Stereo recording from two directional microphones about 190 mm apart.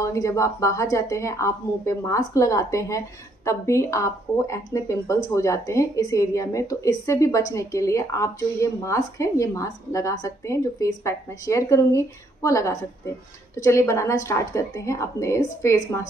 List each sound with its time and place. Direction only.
0.0 s speech: 15° left (ahead or behind)